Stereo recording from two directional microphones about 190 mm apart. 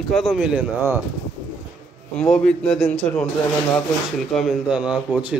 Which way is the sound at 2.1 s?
5° left (ahead or behind).